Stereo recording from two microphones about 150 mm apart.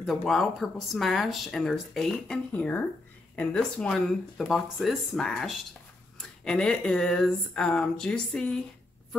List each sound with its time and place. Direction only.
0.0 s speech: centre (ahead or behind)